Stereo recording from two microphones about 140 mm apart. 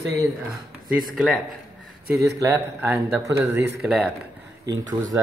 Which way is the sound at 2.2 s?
20° right (ahead or behind).